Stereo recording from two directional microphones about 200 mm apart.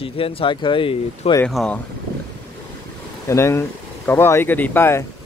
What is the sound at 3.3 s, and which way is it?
Speech, 15° left (ahead or behind).